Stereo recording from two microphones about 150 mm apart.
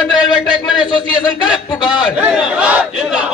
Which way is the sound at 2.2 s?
5° right (ahead or behind).